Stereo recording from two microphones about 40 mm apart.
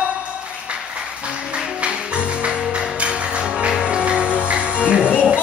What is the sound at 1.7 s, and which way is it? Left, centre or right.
Music, right.